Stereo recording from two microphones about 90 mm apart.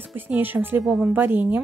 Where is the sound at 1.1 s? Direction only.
20° right (ahead or behind).